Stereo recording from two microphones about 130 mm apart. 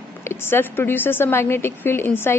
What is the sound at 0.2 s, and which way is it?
A woman's voice, 20° left (ahead or behind).